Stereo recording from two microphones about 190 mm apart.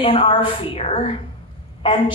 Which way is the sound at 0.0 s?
30° left (ahead or behind).